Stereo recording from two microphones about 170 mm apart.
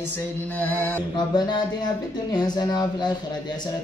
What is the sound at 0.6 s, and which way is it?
Speech, 10° left (ahead or behind).